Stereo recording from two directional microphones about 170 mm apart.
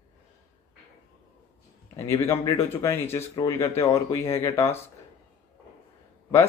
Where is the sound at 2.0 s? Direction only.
15° left (ahead or behind).